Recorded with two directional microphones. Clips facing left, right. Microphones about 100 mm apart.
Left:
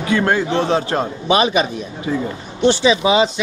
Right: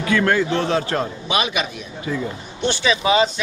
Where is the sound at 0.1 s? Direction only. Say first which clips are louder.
Left 1 dB; 25° left (ahead or behind).